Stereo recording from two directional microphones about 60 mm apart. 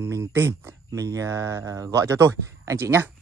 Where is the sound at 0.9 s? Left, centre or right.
Right.